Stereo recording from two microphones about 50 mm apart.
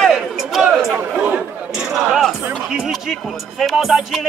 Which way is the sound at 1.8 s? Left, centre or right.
Centre.